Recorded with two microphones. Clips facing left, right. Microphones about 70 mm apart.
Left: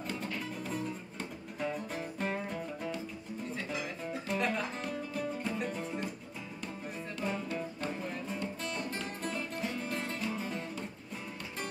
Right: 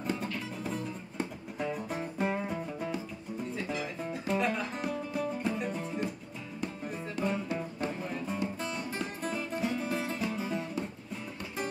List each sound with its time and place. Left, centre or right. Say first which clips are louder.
0.0 s music: right 3 dB; centre
7.2 s music: right 2 dB; centre